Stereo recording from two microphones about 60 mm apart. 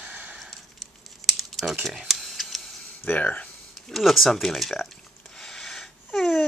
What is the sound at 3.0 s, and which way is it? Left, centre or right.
Speech, left.